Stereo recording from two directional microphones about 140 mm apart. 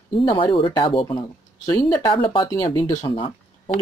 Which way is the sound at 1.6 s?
25° left (ahead or behind).